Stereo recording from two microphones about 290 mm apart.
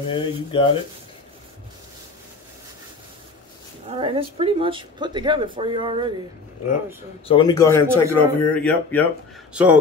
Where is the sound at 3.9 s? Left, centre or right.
Centre.